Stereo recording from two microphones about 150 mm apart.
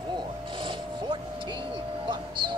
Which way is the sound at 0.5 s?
35° right (ahead or behind).